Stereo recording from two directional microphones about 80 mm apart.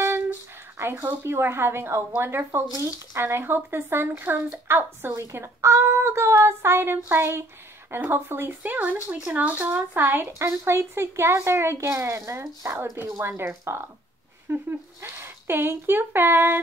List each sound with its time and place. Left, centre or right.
0.0 s a sound: right
0.9 s a woman's voice: right
2.7 s speech: right
3.2 s a woman's voice: right